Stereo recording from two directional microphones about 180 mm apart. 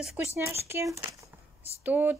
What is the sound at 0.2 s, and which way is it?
A woman's voice, 15° right (ahead or behind).